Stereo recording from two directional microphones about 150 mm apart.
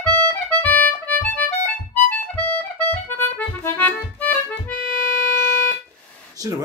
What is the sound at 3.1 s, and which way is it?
Accordion, 10° left (ahead or behind).